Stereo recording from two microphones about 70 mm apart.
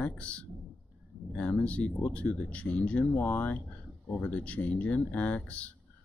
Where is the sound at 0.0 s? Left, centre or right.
Centre.